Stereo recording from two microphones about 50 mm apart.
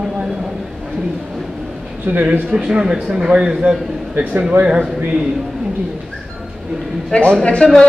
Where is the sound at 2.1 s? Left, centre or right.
Right.